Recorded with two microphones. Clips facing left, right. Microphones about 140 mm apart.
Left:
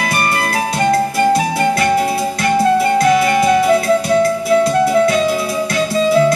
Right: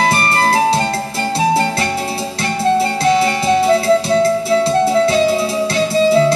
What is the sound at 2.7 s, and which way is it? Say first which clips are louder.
Music: left 2 dB; 30° right (ahead or behind).